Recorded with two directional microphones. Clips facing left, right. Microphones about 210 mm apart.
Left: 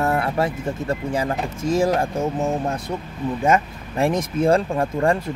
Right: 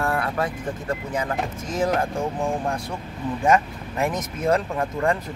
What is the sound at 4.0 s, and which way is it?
Speech, 30° left (ahead or behind).